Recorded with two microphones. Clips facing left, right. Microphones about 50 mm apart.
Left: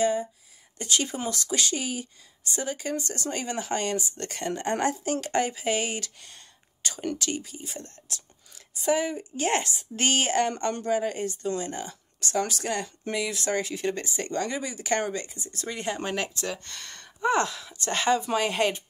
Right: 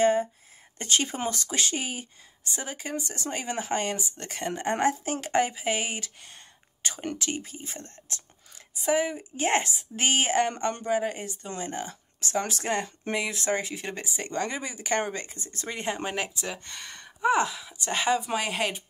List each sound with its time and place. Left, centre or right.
0.0 s a woman's voice: right
2.5 s a woman's voice: centre
8.7 s a woman's voice: centre
16.0 s speech: centre